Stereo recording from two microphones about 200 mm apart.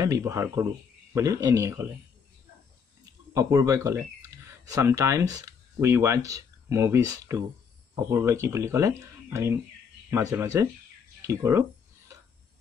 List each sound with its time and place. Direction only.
0.0 s speech: 15° right (ahead or behind)
3.3 s speech: 15° right (ahead or behind)